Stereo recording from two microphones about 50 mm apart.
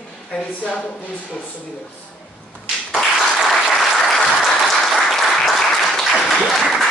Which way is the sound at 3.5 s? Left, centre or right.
Centre.